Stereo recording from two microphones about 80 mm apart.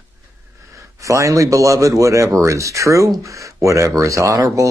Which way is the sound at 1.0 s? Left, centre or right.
Right.